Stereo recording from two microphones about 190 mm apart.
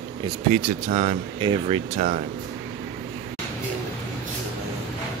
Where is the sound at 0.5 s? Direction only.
40° right (ahead or behind).